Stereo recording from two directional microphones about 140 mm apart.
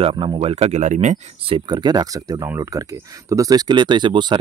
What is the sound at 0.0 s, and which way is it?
Speech, 40° right (ahead or behind).